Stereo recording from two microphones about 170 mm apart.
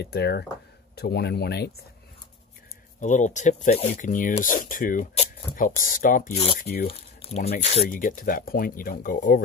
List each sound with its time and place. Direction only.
0.0 s speech: 75° left (ahead or behind)
3.0 s speech: 45° left (ahead or behind)
6.3 s speech: 35° left (ahead or behind)
6.6 s speech: 60° left (ahead or behind)
6.9 s speech: 35° left (ahead or behind); by 9.4 s 55° left (ahead or behind)